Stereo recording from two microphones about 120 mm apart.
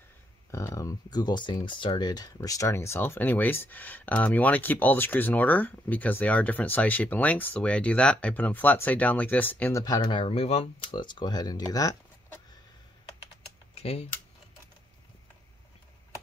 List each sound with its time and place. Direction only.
0.5 s speech: 25° left (ahead or behind)
10.0 s speech: 45° left (ahead or behind)
11.0 s speech: 40° left (ahead or behind)
13.7 s speech: 55° left (ahead or behind)